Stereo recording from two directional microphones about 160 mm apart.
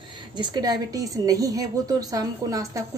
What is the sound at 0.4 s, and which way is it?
A woman's voice, 25° right (ahead or behind).